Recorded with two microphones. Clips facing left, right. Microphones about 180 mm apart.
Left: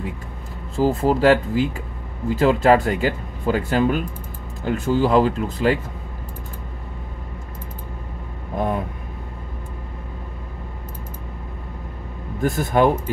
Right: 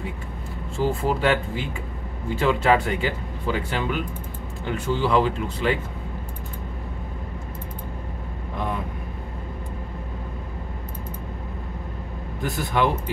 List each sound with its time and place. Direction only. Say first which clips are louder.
0.7 s speech: left 5 dB; 35° left (ahead or behind)
8.5 s vehicle: left 6 dB; 45° left (ahead or behind)
12.4 s a man's voice: left 6 dB; 45° left (ahead or behind)